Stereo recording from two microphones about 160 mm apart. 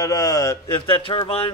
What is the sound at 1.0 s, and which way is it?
Speech, 30° left (ahead or behind).